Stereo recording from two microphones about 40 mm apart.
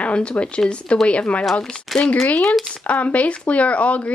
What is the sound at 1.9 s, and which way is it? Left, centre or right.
Speech, centre.